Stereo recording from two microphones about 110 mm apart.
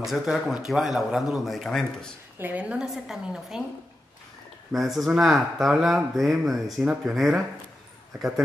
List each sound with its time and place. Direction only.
0.0 s speech: centre (ahead or behind)
2.3 s a woman's voice: 15° right (ahead or behind)
4.7 s speech: centre (ahead or behind)